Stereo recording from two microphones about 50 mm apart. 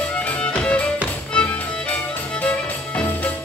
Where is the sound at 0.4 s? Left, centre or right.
Left.